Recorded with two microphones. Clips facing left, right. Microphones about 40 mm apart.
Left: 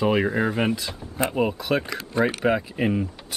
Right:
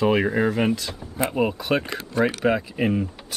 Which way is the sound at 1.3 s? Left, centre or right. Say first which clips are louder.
Right 1 dB; centre.